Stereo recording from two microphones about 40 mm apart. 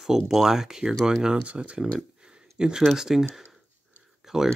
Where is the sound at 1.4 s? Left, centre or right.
Right.